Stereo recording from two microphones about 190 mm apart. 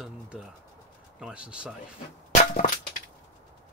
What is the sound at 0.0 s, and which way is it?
Pigeon, centre (ahead or behind).